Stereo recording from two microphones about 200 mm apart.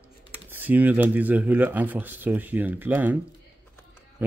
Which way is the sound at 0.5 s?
10° right (ahead or behind).